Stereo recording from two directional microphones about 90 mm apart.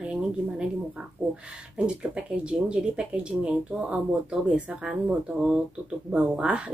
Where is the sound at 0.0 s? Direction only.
10° right (ahead or behind).